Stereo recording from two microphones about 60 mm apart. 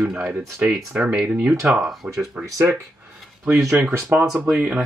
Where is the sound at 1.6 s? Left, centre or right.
Right.